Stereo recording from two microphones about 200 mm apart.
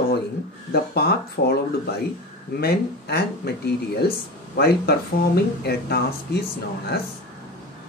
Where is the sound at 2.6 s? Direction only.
50° left (ahead or behind).